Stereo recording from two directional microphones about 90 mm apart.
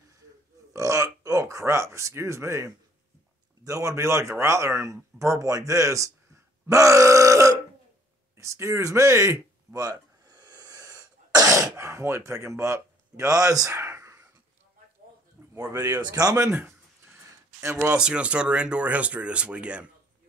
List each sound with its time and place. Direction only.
0.7 s a sound: 35° right (ahead or behind)
3.6 s speech: 35° right (ahead or behind)
9.8 s sneeze: 50° right (ahead or behind); by 14.2 s 30° right (ahead or behind)
15.5 s speech: 40° right (ahead or behind)
16.4 s speech: 25° right (ahead or behind)
17.9 s speech: 10° right (ahead or behind)